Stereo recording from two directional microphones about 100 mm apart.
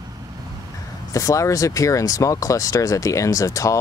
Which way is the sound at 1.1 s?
35° left (ahead or behind).